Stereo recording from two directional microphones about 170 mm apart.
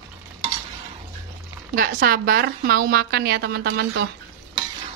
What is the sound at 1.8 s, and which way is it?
A woman's voice, 60° right (ahead or behind).